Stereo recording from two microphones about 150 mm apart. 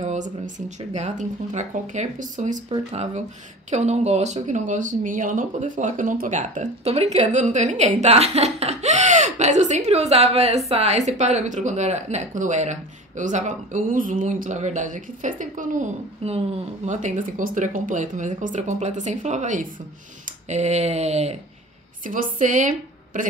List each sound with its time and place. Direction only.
0.0 s speech: 55° right (ahead or behind)
16.3 s speech: 45° right (ahead or behind)
22.0 s a woman's voice: 60° right (ahead or behind)